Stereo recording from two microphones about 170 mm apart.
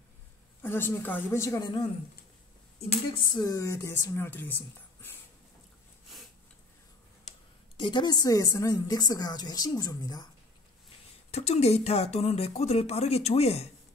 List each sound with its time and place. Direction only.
0.6 s speech: 15° left (ahead or behind)
2.9 s speech: 30° left (ahead or behind); by 5.1 s 10° left (ahead or behind)
7.8 s a woman's voice: 25° left (ahead or behind)
11.3 s speech: 40° left (ahead or behind)